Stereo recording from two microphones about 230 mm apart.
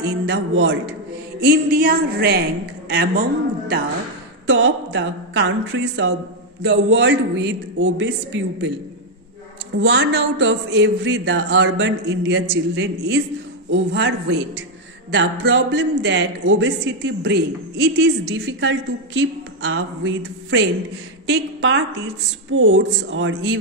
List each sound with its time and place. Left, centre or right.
0.0 s a man's voice: right
1.4 s a woman's voice: right
4.5 s a man's voice: right
9.8 s a man's voice: right